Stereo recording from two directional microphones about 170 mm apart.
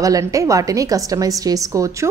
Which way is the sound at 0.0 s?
20° right (ahead or behind).